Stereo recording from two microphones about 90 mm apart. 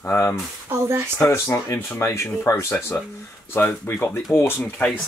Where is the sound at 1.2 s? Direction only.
35° left (ahead or behind).